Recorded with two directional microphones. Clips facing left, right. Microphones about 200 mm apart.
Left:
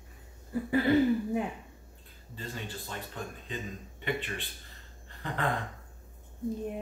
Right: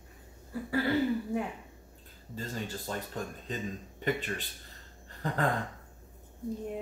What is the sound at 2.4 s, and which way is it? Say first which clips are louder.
Speech: right 3 dB; 40° right (ahead or behind).